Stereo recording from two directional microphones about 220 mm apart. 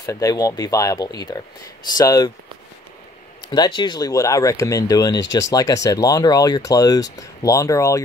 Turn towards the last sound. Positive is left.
turn(degrees=15)  # may be behind; listen again after turning